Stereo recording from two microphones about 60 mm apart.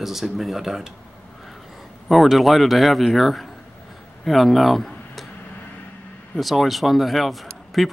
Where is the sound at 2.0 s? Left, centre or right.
Centre.